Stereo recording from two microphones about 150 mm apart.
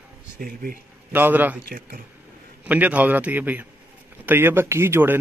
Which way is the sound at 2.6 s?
10° right (ahead or behind).